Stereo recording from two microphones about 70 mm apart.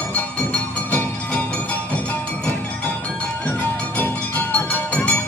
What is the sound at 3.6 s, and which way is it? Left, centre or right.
Music, left.